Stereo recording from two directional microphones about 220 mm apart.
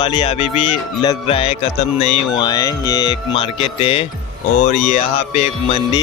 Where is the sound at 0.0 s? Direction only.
25° left (ahead or behind).